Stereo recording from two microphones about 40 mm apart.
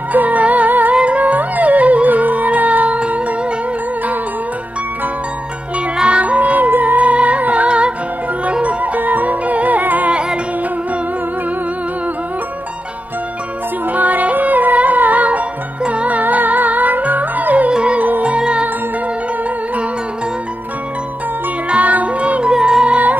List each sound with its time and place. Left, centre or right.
0.1 s music: right
0.9 s music: right
5.9 s music: right
7.0 s music: right
8.6 s music: right
13.9 s music: right
17.6 s music: right
21.6 s music: right
22.5 s music: centre